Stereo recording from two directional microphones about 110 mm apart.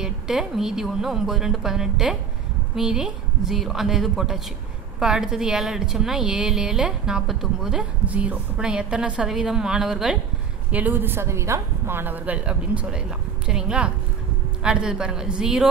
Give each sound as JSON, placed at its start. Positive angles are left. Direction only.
{"t": 0.0, "sound": "a woman's voice", "side_deg": -5}
{"t": 10.7, "sound": "a woman's voice", "side_deg": -15}